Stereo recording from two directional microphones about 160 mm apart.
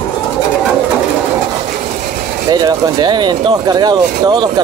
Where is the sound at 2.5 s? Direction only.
25° right (ahead or behind).